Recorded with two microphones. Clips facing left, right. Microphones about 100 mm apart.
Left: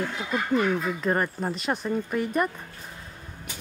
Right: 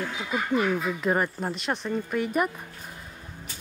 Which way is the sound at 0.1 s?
5° right (ahead or behind).